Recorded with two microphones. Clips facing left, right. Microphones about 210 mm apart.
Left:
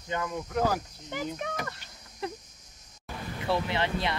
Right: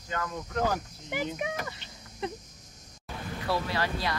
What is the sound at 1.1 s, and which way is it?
Speech, 5° right (ahead or behind).